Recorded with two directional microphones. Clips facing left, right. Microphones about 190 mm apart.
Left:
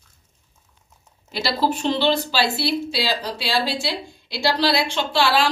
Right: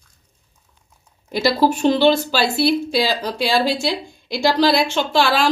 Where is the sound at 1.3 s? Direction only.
45° right (ahead or behind).